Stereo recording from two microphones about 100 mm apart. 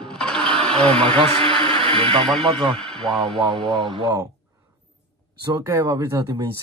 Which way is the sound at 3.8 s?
50° right (ahead or behind).